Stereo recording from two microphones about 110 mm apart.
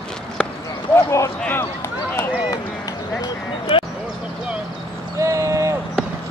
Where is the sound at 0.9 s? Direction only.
25° left (ahead or behind).